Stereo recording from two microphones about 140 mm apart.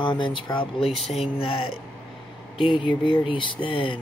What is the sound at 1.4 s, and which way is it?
Speech, 40° left (ahead or behind).